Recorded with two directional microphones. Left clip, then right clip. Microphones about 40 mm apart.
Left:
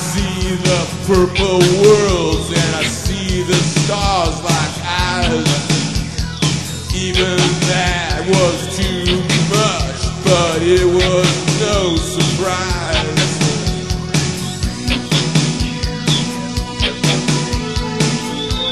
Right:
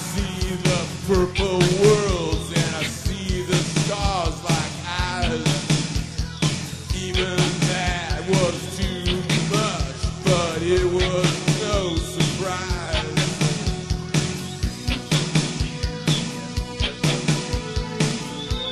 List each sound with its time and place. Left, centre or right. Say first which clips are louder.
0.1 s music: left 7 dB; left
7.2 s music: left 8 dB; left
14.9 s music: left 7 dB; left
16.8 s music: left 7 dB; left